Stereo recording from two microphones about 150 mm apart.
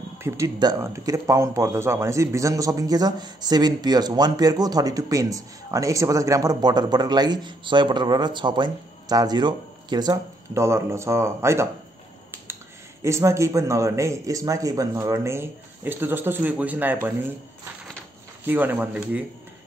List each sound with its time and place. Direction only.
0.2 s speech: 25° right (ahead or behind)
13.0 s speech: 20° right (ahead or behind)
18.4 s speech: 15° right (ahead or behind)